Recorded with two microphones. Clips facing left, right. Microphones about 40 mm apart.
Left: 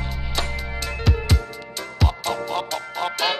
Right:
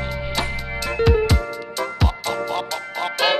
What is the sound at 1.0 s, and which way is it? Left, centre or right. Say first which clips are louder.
Music: right 10 dB; centre.